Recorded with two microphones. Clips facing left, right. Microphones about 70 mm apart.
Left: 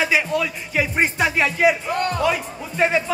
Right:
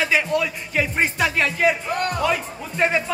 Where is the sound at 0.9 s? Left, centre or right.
Centre.